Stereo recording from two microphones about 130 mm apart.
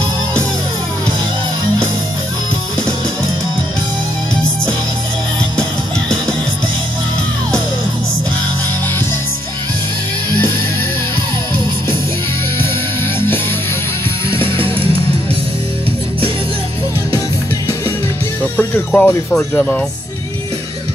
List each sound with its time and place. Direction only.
5.6 s music: 10° left (ahead or behind)
14.3 s music: 40° right (ahead or behind)
18.4 s speech: 10° left (ahead or behind)